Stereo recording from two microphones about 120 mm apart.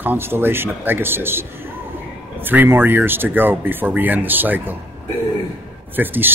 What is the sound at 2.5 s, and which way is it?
Speech, 15° right (ahead or behind).